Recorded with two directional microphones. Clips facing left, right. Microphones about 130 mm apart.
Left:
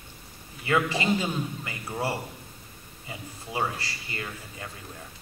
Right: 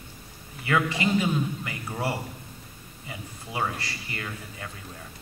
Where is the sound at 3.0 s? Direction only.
30° left (ahead or behind).